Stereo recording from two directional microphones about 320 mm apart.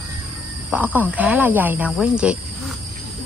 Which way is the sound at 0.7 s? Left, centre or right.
Centre.